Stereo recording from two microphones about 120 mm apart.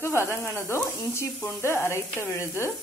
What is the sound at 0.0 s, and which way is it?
Speech, 20° left (ahead or behind).